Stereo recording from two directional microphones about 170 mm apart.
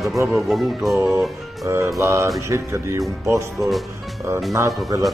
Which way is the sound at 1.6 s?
15° right (ahead or behind).